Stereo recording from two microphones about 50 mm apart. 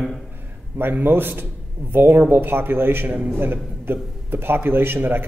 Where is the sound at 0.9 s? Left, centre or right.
Right.